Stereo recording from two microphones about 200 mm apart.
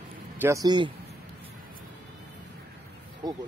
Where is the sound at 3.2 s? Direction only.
20° right (ahead or behind).